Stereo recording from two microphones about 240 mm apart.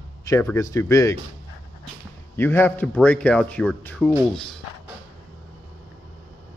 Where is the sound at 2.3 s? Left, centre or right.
Centre.